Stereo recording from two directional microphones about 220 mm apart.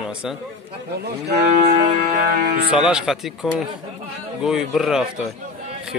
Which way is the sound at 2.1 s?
45° right (ahead or behind).